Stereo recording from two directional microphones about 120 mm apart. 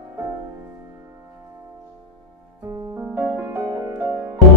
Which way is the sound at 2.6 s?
30° right (ahead or behind).